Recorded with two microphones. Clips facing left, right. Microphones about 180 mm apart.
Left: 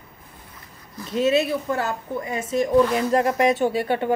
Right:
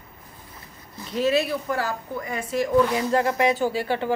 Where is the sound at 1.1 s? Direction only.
25° left (ahead or behind).